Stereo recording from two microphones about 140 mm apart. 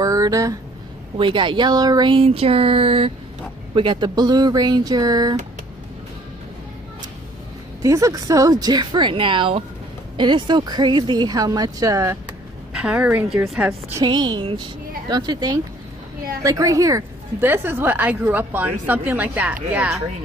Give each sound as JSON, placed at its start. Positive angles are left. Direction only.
{"t": 0.0, "sound": "a sound", "side_deg": -25}
{"t": 1.1, "sound": "speech", "side_deg": -35}
{"t": 7.8, "sound": "speech", "side_deg": -25}
{"t": 12.7, "sound": "a woman's voice", "side_deg": -10}
{"t": 14.0, "sound": "a woman's voice", "side_deg": -35}